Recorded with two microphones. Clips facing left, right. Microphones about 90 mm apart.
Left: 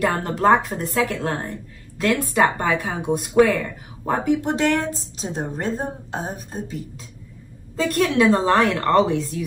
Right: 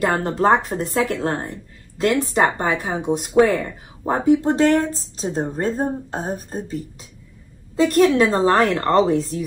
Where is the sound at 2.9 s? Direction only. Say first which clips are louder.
Right 2 dB; 20° right (ahead or behind).